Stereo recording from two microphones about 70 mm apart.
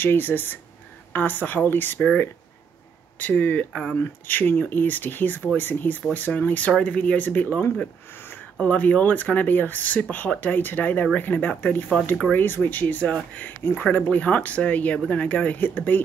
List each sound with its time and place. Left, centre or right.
0.0 s speech: left
3.2 s speech: left
8.5 s speech: left
13.6 s speech: left
13.9 s speech: left